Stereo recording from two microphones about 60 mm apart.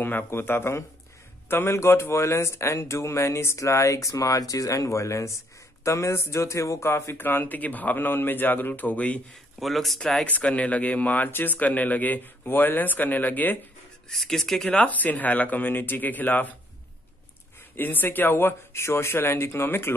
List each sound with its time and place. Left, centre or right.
0.0 s speech: left
7.2 s speech: left
9.3 s a man's voice: centre
10.2 s speech: left
14.0 s a man's voice: centre
14.7 s speech: left
17.6 s speech: left